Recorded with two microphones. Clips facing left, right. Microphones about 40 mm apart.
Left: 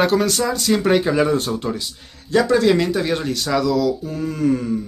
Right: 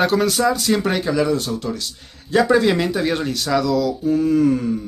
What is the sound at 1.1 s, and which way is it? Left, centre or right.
Speech, left.